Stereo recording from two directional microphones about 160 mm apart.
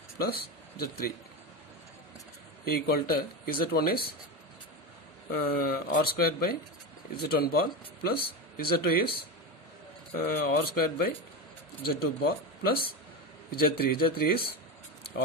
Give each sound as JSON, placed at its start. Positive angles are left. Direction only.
{"t": 0.2, "sound": "speech", "side_deg": 70}
{"t": 2.7, "sound": "speech", "side_deg": 70}
{"t": 5.3, "sound": "speech", "side_deg": 65}